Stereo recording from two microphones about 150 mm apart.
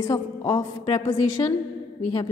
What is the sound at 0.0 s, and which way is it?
A woman's voice, 20° left (ahead or behind).